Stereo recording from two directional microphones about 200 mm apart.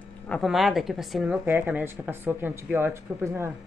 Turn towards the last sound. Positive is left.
turn(degrees=-10)  # may be behind; listen again after turning